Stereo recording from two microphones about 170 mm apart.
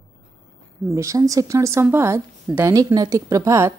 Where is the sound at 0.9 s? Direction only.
20° right (ahead or behind).